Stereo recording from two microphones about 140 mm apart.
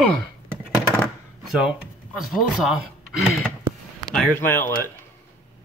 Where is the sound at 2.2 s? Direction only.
Centre (ahead or behind).